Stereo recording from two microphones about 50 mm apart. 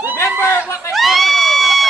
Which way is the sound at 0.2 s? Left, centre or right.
Left.